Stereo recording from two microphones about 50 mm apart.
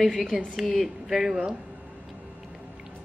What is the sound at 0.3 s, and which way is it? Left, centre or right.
A woman's voice, right.